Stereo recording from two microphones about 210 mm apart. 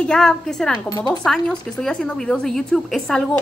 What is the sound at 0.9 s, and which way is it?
Speech, 20° left (ahead or behind).